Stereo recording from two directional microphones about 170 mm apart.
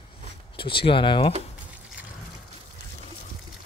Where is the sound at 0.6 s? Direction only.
30° left (ahead or behind).